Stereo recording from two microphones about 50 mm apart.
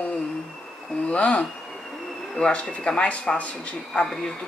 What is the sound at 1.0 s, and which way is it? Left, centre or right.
Speech, left.